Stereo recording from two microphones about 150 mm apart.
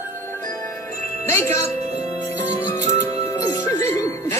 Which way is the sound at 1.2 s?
20° left (ahead or behind).